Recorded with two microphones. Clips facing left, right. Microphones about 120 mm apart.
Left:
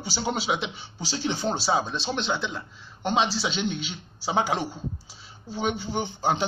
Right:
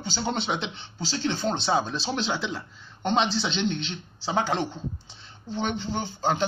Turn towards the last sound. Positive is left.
turn(degrees=15)  # may be behind; listen again after turning